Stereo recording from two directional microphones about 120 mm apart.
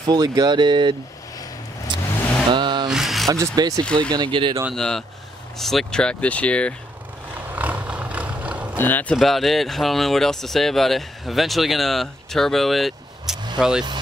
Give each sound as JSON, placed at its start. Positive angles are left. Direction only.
{"t": 0.0, "sound": "speech", "side_deg": -35}
{"t": 2.5, "sound": "vehicle", "side_deg": -40}
{"t": 2.9, "sound": "a sound", "side_deg": 0}
{"t": 3.3, "sound": "speech", "side_deg": -30}
{"t": 3.8, "sound": "speech", "side_deg": 10}
{"t": 4.1, "sound": "speech", "side_deg": -40}
{"t": 4.7, "sound": "speech", "side_deg": 5}
{"t": 7.5, "sound": "a sound", "side_deg": -15}
{"t": 8.7, "sound": "speech", "side_deg": 15}
{"t": 9.1, "sound": "speech", "side_deg": 0}